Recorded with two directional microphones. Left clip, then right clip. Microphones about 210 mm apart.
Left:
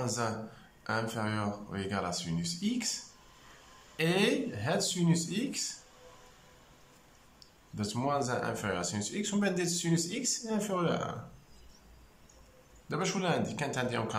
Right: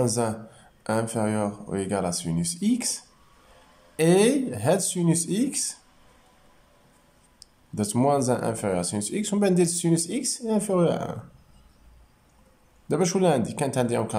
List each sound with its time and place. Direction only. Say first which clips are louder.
0.0 s speech: right 8 dB; 25° right (ahead or behind)
7.3 s speech: right 11 dB; 30° right (ahead or behind)
12.8 s speech: right 10 dB; 30° right (ahead or behind)